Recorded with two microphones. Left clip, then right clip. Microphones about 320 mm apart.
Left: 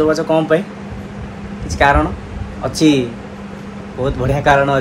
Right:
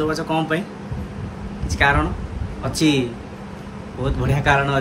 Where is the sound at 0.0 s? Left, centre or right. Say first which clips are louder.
Left 8 dB; centre.